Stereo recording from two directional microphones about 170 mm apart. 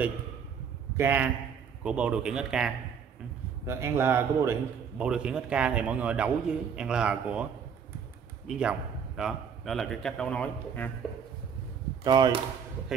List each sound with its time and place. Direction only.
0.9 s a man's voice: 10° right (ahead or behind)
3.6 s a man's voice: 15° right (ahead or behind)
8.5 s a man's voice: 5° right (ahead or behind)
12.0 s speech: 25° right (ahead or behind)